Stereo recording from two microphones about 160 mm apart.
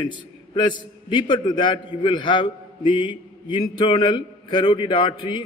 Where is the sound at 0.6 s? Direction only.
30° left (ahead or behind).